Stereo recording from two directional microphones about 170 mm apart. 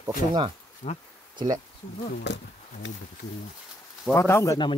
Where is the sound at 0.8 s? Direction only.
45° left (ahead or behind).